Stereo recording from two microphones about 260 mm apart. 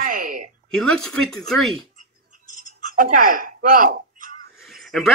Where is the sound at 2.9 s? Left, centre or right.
Right.